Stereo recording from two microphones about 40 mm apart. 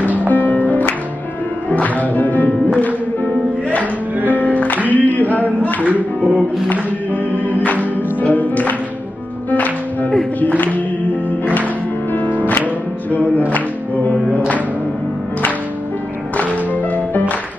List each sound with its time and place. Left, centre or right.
0.3 s music: left
3.8 s music: right
4.4 s music: left
4.8 s a sound: left
5.8 s music: right
6.7 s music: left
11.2 s music: left
16.7 s music: left